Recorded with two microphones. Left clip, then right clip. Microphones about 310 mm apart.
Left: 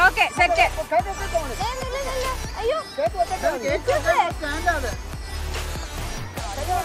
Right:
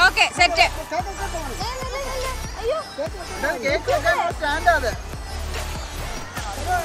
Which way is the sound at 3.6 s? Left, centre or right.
Right.